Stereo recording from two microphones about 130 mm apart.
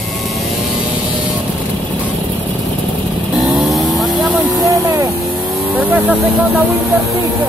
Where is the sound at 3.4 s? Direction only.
Centre (ahead or behind).